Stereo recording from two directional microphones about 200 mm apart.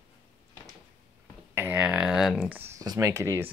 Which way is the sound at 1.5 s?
10° right (ahead or behind).